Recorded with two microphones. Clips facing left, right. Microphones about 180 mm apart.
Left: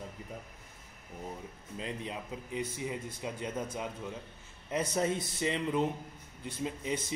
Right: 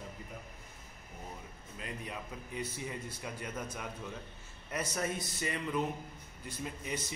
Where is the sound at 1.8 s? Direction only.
25° left (ahead or behind).